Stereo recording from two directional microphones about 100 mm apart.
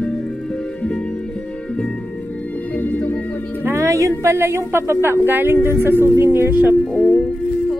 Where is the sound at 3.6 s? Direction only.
30° right (ahead or behind).